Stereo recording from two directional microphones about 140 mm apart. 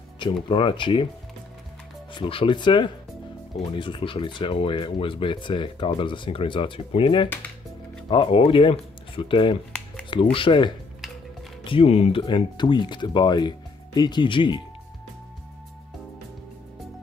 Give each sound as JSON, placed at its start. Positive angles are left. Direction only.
{"t": 0.2, "sound": "speech", "side_deg": 35}
{"t": 2.1, "sound": "speech", "side_deg": 40}